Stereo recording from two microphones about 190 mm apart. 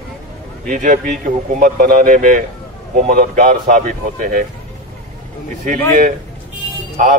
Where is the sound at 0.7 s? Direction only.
45° right (ahead or behind).